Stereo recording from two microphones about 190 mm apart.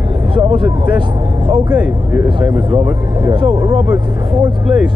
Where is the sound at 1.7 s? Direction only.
10° right (ahead or behind).